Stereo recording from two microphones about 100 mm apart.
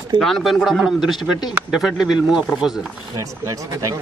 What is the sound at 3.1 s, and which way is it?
Speech, 35° right (ahead or behind).